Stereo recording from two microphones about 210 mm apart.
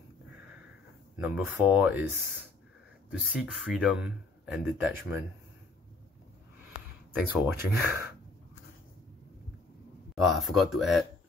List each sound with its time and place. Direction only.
1.1 s speech: 5° right (ahead or behind)
3.1 s speech: 5° right (ahead or behind)
7.2 s speech: 5° right (ahead or behind)
10.1 s speech: centre (ahead or behind)